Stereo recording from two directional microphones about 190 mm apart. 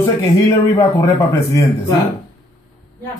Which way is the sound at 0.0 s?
15° left (ahead or behind).